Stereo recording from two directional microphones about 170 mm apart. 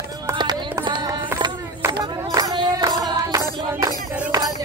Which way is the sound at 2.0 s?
25° right (ahead or behind).